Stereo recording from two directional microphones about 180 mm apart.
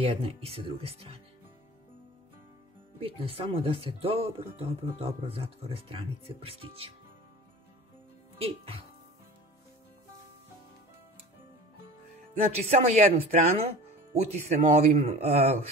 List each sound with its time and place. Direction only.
0.0 s speech: 35° right (ahead or behind)
3.0 s speech: 30° right (ahead or behind)
8.4 s speech: 30° right (ahead or behind)
12.5 s speech: 35° right (ahead or behind)